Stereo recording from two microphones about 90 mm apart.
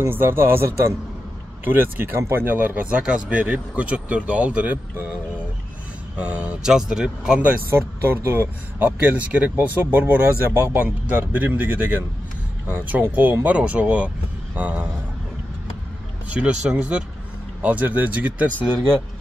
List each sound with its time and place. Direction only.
0.1 s speech: 25° right (ahead or behind)
6.1 s speech: 15° right (ahead or behind)
7.7 s speech: 25° right (ahead or behind)
16.3 s speech: 15° right (ahead or behind)